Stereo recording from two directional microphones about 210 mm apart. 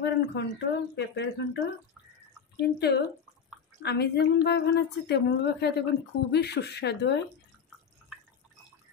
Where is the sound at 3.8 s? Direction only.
50° left (ahead or behind).